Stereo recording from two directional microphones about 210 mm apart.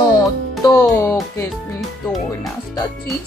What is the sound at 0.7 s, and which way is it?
Speech, 15° left (ahead or behind).